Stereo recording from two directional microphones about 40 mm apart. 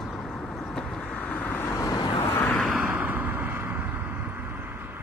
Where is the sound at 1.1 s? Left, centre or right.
Left.